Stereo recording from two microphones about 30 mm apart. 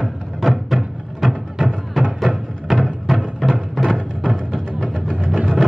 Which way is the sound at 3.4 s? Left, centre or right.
Centre.